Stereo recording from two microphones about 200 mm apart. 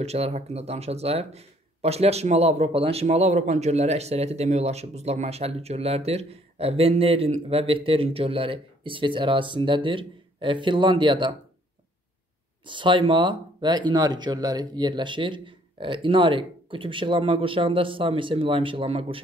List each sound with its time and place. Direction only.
0.0 s speech: 30° right (ahead or behind)
12.6 s speech: 25° right (ahead or behind)